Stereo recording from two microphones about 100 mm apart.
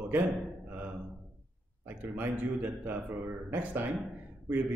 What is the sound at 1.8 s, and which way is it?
A man's voice, 15° right (ahead or behind).